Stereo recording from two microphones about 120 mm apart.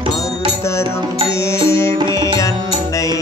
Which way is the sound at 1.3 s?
25° left (ahead or behind).